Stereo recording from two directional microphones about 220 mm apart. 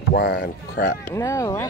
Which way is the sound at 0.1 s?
50° left (ahead or behind).